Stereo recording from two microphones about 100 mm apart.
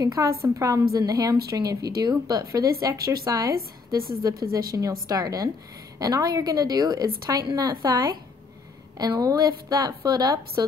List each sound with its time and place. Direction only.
0.0 s a woman's voice: 35° right (ahead or behind)